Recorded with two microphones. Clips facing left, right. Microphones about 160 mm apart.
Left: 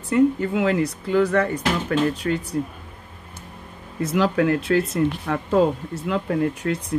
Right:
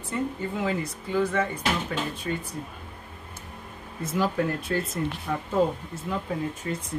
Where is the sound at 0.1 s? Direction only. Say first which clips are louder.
Left 11 dB; 75° left (ahead or behind).